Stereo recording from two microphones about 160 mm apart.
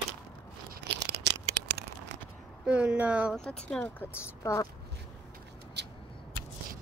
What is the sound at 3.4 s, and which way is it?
Speech, 5° left (ahead or behind).